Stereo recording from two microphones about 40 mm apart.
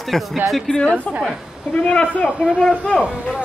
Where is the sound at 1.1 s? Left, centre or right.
Left.